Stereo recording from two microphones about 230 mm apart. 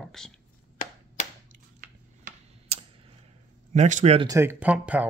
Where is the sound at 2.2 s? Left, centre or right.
Right.